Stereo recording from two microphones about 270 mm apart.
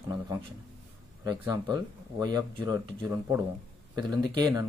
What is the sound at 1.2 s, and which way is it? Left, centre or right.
Speech, centre.